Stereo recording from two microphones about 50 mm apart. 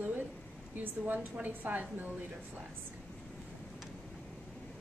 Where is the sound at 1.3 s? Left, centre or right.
Right.